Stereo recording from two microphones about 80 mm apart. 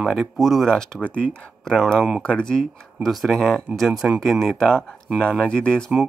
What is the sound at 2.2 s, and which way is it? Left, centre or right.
Speech, centre.